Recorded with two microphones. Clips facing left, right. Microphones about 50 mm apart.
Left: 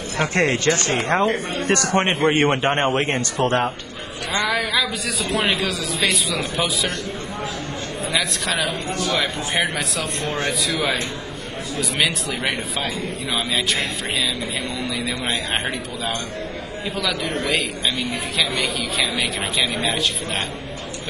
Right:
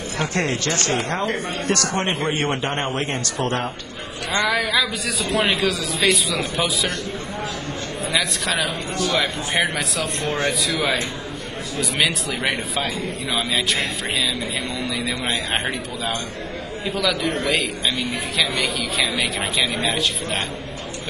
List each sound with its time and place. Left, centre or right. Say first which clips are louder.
0.2 s a man's voice: left 4 dB; left
4.3 s a man's voice: right 1 dB; centre
8.1 s a man's voice: even; centre